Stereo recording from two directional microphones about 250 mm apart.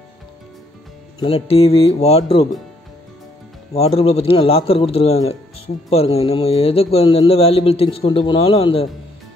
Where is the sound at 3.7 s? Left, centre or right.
Left.